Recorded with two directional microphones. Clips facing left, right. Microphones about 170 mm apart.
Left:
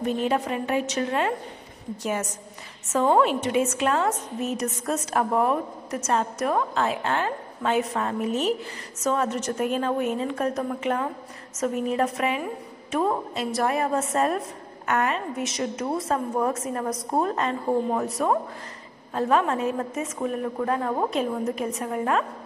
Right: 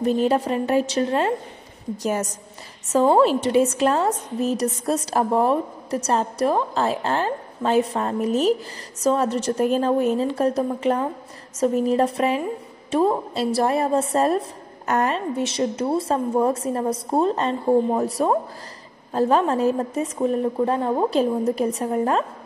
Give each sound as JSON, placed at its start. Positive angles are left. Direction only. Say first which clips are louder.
{"t": 0.0, "sound": "a woman's voice", "louder": "right 5 dB", "side_deg": -35}